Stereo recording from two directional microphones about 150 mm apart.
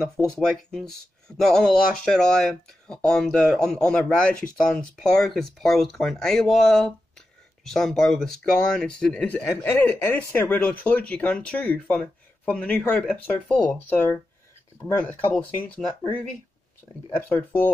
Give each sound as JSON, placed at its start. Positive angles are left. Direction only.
{"t": 0.4, "sound": "speech", "side_deg": 5}
{"t": 17.3, "sound": "speech", "side_deg": 15}